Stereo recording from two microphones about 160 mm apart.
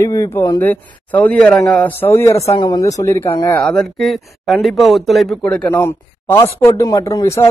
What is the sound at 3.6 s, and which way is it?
A man's voice, 5° left (ahead or behind).